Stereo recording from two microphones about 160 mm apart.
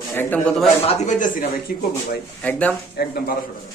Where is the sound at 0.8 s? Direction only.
50° left (ahead or behind).